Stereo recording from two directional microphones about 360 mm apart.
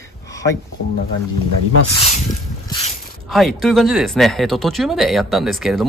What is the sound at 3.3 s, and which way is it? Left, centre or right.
Speech, centre.